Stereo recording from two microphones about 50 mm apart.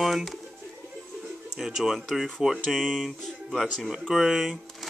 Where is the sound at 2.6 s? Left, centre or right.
Centre.